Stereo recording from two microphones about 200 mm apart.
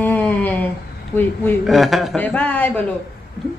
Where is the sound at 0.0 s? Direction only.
10° left (ahead or behind).